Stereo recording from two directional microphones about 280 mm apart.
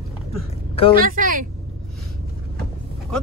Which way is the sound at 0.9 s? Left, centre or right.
Right.